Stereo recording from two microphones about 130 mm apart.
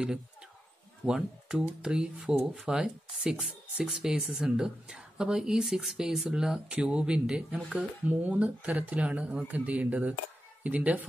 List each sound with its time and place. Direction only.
1.0 s speech: 5° right (ahead or behind)